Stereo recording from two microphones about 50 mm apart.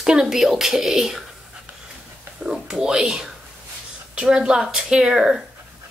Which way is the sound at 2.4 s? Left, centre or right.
Centre.